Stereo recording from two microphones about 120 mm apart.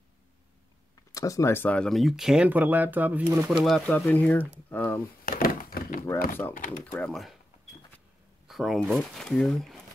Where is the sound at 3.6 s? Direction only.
5° left (ahead or behind).